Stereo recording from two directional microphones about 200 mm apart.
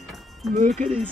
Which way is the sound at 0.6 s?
40° right (ahead or behind).